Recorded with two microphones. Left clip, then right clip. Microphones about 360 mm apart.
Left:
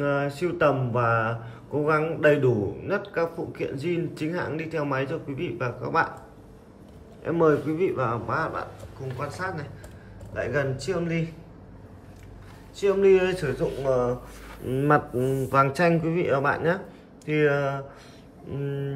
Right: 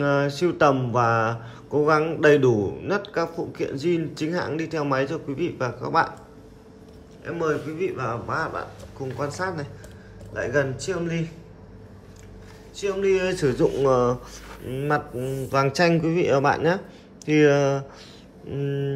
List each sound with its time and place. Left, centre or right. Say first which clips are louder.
0.0 s speech: right 4 dB; centre
7.2 s speech: left 4 dB; centre
12.7 s speech: left 3 dB; centre
14.7 s speech: left 3 dB; centre